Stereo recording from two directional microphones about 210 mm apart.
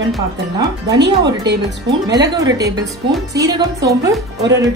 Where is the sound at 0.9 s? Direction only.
55° right (ahead or behind).